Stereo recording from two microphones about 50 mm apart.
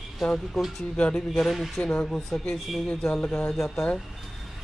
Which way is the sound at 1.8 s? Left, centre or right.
Left.